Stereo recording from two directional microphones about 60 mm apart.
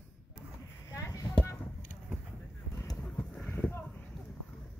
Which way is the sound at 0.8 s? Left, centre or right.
Left.